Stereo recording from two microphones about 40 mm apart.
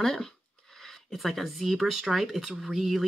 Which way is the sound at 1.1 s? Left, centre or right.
Centre.